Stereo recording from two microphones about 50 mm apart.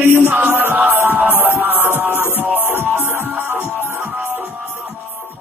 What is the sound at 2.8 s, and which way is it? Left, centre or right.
Music, right.